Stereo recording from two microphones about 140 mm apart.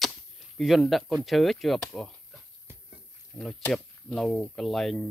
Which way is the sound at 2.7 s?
15° right (ahead or behind).